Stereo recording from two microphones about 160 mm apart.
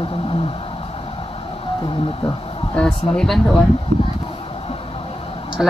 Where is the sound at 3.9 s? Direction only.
35° left (ahead or behind).